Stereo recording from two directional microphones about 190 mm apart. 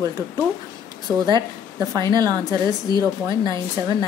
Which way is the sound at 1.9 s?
20° right (ahead or behind).